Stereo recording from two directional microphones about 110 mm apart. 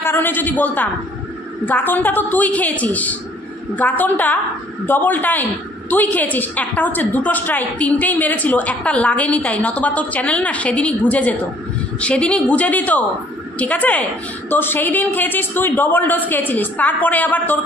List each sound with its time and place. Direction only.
0.0 s a woman's voice: 20° left (ahead or behind)